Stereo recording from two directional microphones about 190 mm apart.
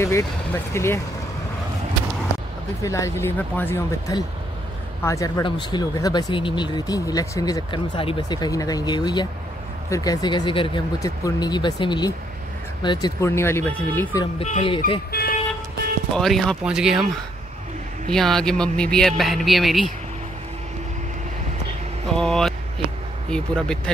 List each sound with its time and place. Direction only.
0.7 s speech: 15° left (ahead or behind)
2.8 s speech: 15° left (ahead or behind)
14.2 s speech: 30° left (ahead or behind)
15.0 s speech: 55° left (ahead or behind)
16.2 s speech: centre (ahead or behind)
18.1 s speech: centre (ahead or behind)
22.0 s speech: 5° left (ahead or behind)